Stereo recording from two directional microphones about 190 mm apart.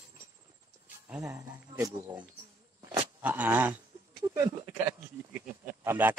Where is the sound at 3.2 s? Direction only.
10° right (ahead or behind).